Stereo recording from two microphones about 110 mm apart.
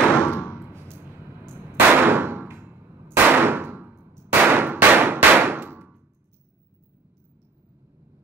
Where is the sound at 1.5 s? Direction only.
20° right (ahead or behind).